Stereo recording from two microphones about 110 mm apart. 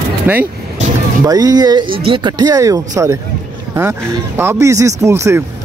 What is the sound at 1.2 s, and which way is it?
Speech, 35° right (ahead or behind).